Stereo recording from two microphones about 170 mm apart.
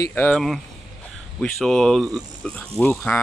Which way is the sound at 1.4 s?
5° left (ahead or behind).